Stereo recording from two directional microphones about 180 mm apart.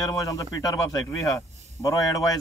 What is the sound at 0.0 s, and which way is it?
Speech, 20° left (ahead or behind).